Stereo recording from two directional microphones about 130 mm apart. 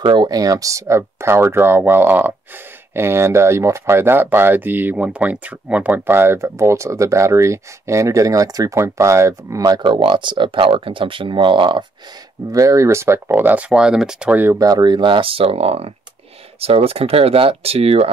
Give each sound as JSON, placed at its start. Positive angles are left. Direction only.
{"t": 0.0, "sound": "speech", "side_deg": -35}
{"t": 12.5, "sound": "speech", "side_deg": -25}
{"t": 14.6, "sound": "speech", "side_deg": -30}